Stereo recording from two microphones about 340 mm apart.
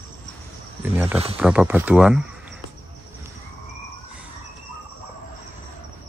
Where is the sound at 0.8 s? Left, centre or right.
Centre.